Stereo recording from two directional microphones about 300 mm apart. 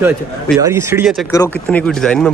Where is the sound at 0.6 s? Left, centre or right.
Centre.